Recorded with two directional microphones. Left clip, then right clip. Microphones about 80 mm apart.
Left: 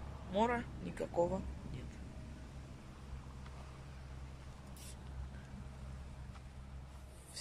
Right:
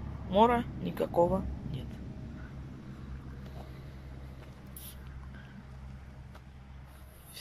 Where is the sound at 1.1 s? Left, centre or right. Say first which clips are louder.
Right 8 dB; right.